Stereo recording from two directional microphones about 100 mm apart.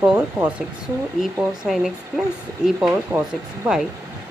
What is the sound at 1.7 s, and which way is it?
Speech, 5° right (ahead or behind).